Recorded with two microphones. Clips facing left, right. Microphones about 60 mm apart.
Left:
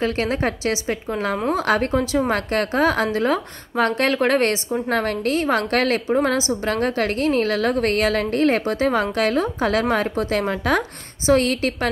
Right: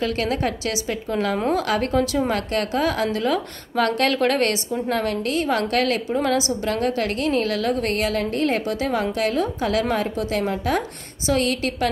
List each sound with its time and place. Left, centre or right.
0.0 s a woman's voice: left
4.8 s a woman's voice: left
11.2 s a woman's voice: left